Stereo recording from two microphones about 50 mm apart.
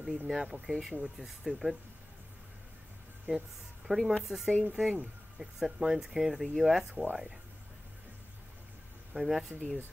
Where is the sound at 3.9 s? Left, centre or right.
Centre.